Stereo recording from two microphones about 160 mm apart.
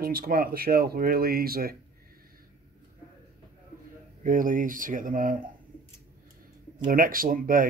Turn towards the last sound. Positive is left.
turn(degrees=-60)  # may be behind; listen again after turning